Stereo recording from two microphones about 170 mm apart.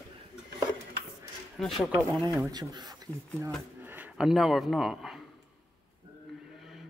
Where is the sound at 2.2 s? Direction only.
20° right (ahead or behind).